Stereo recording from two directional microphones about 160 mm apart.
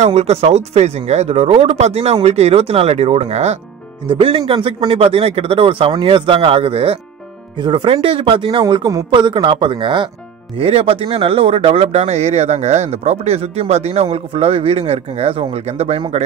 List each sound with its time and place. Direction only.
0.0 s speech: 40° right (ahead or behind)
4.1 s speech: 30° right (ahead or behind)